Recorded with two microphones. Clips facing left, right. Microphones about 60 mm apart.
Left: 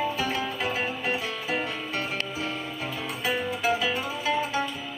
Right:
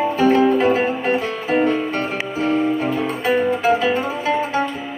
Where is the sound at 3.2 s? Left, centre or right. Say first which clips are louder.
Right 9 dB; right.